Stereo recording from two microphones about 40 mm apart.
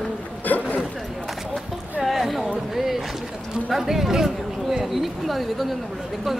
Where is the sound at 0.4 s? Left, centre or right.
Left.